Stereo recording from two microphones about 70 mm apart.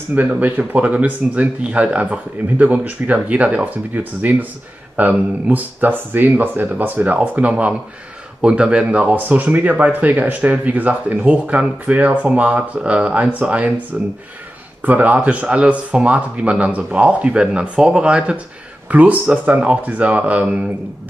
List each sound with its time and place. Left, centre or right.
0.1 s speech: right